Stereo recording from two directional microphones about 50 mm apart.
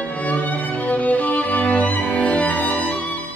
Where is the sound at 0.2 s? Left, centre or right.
Left.